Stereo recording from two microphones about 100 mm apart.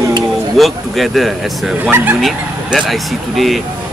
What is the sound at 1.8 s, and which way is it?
Speech, 20° right (ahead or behind).